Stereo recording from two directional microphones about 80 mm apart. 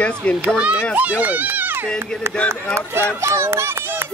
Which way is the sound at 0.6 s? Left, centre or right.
Centre.